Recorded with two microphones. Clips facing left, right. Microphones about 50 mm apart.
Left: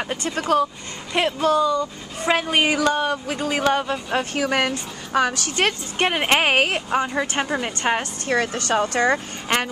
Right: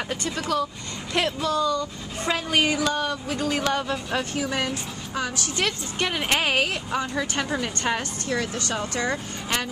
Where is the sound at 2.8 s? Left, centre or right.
Left.